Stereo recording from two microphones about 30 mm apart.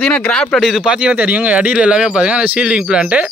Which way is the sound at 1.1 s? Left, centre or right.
Right.